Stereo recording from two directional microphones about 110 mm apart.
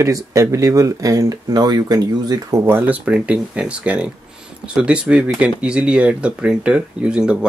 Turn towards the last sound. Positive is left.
turn(degrees=-10)  # may be behind; listen again after turning